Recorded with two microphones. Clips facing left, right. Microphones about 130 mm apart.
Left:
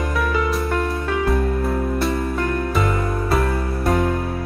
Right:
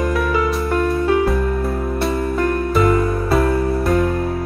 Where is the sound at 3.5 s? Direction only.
25° right (ahead or behind).